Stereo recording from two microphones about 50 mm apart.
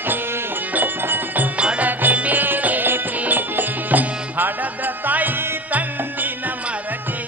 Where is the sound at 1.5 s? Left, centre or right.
Right.